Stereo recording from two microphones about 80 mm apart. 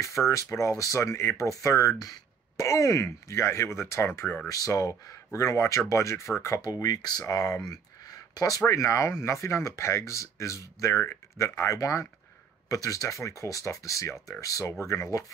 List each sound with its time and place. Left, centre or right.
0.3 s speech: left
4.5 s speech: left
6.6 s speech: left